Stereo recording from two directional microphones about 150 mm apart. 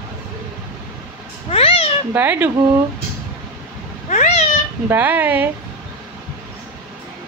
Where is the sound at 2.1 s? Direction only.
15° right (ahead or behind).